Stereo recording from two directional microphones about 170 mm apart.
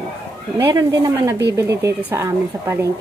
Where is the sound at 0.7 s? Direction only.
20° right (ahead or behind).